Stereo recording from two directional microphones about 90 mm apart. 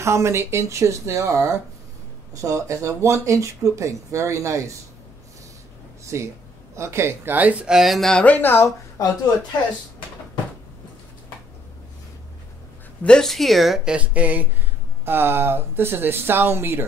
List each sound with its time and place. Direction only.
0.0 s speech: 30° right (ahead or behind)
6.0 s speech: 35° right (ahead or behind); by 9.0 s 30° left (ahead or behind)
13.0 s speech: 5° left (ahead or behind)
13.9 s speech: 15° right (ahead or behind)